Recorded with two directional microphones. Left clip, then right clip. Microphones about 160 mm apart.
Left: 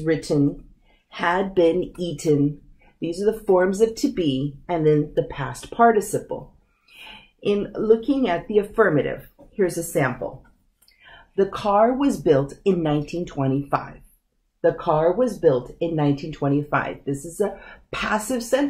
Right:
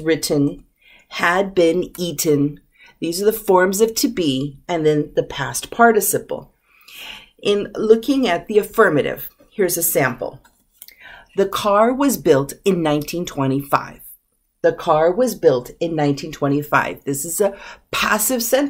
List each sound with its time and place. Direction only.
0.0 s speech: 30° right (ahead or behind)
7.1 s speech: 20° right (ahead or behind)
11.3 s speech: 30° right (ahead or behind)